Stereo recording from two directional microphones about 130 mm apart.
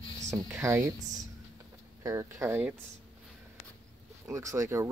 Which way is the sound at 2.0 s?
25° right (ahead or behind).